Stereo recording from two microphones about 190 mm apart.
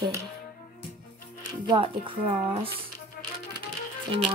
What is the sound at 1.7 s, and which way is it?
Speech, 25° right (ahead or behind).